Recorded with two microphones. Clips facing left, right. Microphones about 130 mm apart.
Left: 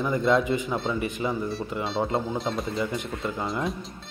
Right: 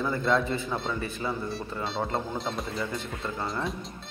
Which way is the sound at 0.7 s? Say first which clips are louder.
Left 3 dB; 5° left (ahead or behind).